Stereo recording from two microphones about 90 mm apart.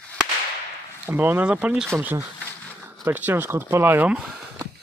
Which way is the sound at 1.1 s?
25° right (ahead or behind).